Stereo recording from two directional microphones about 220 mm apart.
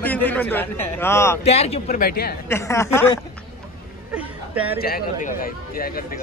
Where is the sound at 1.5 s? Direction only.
30° left (ahead or behind).